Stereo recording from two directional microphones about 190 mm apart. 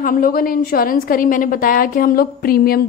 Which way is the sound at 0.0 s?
50° left (ahead or behind).